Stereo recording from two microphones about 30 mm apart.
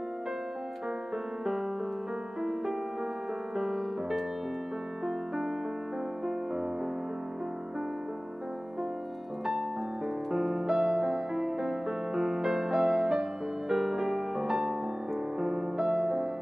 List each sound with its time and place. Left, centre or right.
3.5 s music: centre
10.3 s music: centre